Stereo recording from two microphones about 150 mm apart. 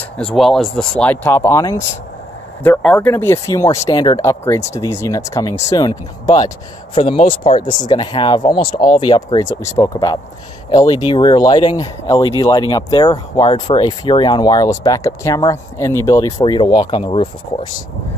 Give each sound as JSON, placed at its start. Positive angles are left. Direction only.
{"t": 0.2, "sound": "speech", "side_deg": 5}
{"t": 2.6, "sound": "speech", "side_deg": 10}